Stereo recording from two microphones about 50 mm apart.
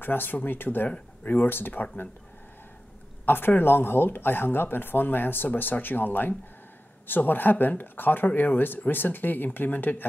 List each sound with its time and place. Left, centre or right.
0.0 s speech: left
0.8 s speech: left
1.3 s speech: left
3.3 s speech: left